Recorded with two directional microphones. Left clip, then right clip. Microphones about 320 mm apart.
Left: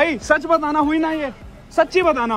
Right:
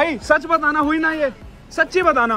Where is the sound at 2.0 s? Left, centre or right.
Centre.